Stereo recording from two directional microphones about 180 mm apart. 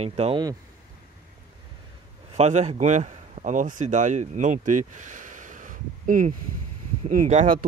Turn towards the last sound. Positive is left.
turn(degrees=-40)  # may be behind; listen again after turning